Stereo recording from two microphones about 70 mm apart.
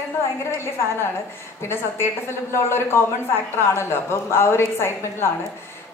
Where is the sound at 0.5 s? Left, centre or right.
Left.